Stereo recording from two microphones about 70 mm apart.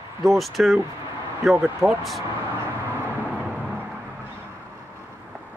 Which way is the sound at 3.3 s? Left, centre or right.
Right.